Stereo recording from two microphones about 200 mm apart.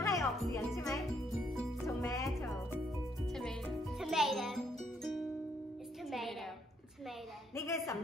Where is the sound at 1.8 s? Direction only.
15° left (ahead or behind).